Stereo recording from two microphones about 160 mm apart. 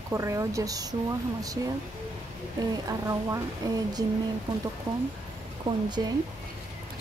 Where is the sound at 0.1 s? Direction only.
20° right (ahead or behind).